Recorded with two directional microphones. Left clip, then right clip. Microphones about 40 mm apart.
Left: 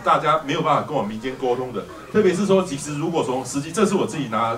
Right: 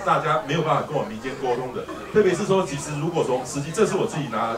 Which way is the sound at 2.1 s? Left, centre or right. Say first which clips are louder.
Left 2 dB; centre.